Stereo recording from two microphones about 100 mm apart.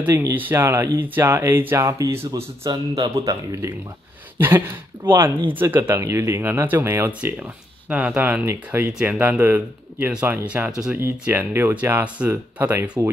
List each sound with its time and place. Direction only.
0.2 s speech: 20° right (ahead or behind)
4.4 s speech: 25° right (ahead or behind)